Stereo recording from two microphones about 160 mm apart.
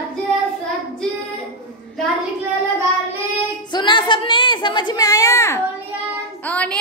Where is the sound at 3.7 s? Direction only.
30° left (ahead or behind).